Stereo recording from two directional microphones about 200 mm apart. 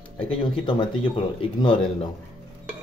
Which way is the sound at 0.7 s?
25° left (ahead or behind).